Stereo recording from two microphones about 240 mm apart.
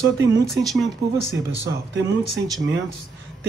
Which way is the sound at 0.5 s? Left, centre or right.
Centre.